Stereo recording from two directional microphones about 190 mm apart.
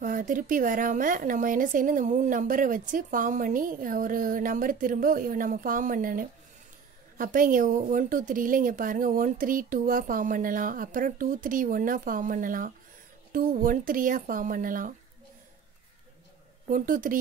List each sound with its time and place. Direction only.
0.0 s speech: 45° right (ahead or behind)
16.7 s speech: 45° right (ahead or behind)